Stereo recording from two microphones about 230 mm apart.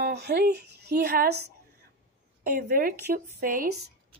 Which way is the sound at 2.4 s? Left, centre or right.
Right.